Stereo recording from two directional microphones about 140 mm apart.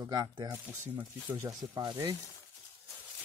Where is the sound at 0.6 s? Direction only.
10° right (ahead or behind); by 2.1 s 30° right (ahead or behind).